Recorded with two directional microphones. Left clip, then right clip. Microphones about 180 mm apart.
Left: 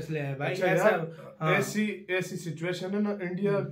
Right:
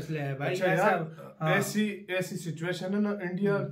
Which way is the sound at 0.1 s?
10° left (ahead or behind).